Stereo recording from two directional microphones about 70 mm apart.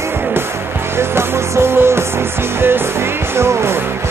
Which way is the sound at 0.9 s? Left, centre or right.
Right.